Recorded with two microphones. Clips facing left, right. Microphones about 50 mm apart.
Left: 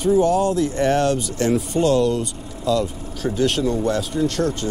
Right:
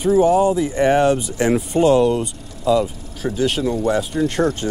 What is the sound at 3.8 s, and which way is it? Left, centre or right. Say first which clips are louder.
Speech: right 2 dB; centre.